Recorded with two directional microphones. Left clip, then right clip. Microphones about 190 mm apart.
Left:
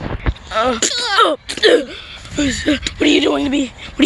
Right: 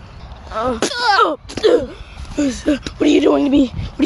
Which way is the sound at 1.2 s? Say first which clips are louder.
Left 2 dB; 10° left (ahead or behind).